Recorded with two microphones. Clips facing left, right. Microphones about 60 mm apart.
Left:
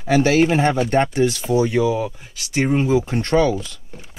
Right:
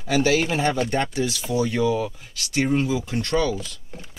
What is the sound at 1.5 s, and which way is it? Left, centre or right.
Speech, left.